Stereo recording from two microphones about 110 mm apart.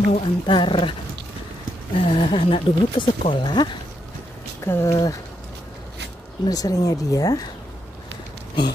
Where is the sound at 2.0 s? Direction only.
50° left (ahead or behind).